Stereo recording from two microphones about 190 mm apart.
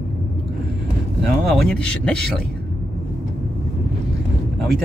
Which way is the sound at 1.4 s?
Centre (ahead or behind).